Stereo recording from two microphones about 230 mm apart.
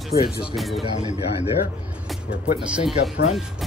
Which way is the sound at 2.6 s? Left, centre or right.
Centre.